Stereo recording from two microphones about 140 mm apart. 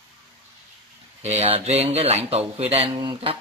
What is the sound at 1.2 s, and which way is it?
Speech, 50° right (ahead or behind).